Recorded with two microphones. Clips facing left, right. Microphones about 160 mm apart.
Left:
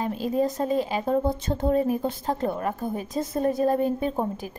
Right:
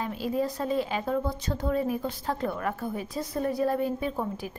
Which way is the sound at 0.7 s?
15° left (ahead or behind).